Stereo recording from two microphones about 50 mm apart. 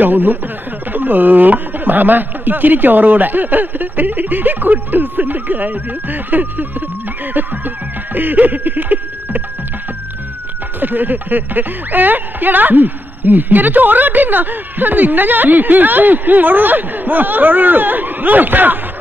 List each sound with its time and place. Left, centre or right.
0.0 s speech: right
7.3 s music: right
10.8 s speech: right